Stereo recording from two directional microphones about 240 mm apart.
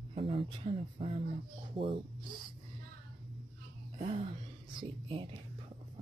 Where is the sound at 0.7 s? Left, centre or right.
Right.